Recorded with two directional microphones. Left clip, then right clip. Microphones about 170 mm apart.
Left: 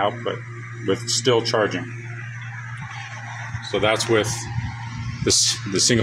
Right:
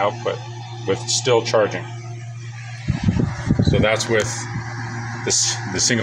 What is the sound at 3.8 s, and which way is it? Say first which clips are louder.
Speech: left 1 dB; 35° left (ahead or behind).